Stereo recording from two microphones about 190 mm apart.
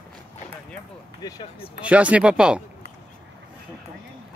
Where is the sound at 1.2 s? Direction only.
25° left (ahead or behind).